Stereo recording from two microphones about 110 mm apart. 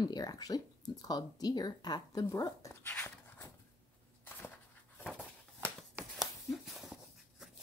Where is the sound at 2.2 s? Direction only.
25° left (ahead or behind).